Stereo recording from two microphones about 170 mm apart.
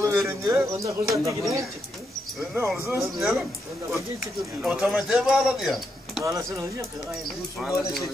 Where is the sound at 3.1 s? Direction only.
Centre (ahead or behind).